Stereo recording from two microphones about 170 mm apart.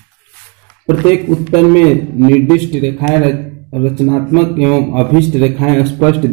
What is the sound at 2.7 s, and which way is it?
A man's voice, centre (ahead or behind).